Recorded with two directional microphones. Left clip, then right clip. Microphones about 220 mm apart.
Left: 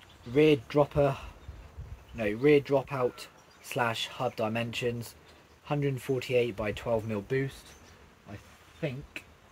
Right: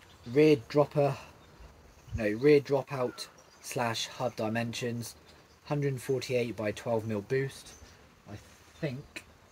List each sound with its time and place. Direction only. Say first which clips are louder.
0.3 s speech: even; 10° left (ahead or behind)